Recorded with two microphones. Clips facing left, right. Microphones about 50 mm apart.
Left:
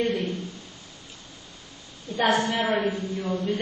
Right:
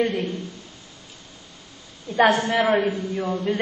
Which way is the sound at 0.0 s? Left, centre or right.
Right.